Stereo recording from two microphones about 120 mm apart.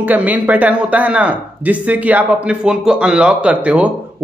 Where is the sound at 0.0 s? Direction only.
15° right (ahead or behind).